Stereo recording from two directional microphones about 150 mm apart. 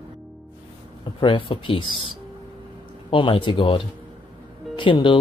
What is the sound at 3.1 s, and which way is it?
Speech, 35° left (ahead or behind).